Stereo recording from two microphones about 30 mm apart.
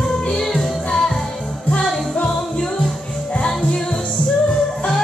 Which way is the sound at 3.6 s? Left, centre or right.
Left.